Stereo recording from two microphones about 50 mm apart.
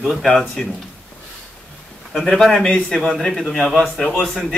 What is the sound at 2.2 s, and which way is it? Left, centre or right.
A man's voice, centre.